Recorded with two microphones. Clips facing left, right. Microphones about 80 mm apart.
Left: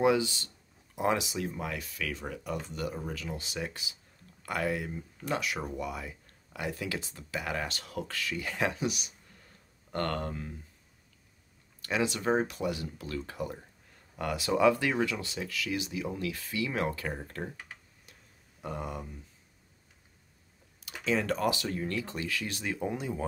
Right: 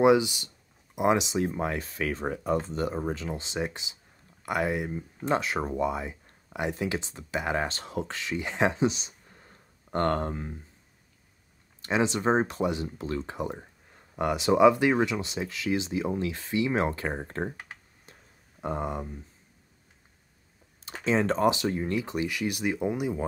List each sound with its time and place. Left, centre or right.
0.0 s speech: centre
11.8 s speech: right
18.6 s speech: right
20.8 s speech: right; by 23.2 s centre